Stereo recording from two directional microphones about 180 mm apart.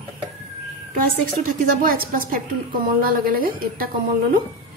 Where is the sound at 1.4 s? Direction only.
50° right (ahead or behind).